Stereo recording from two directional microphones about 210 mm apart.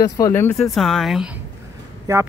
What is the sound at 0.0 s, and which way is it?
Speech, 15° left (ahead or behind).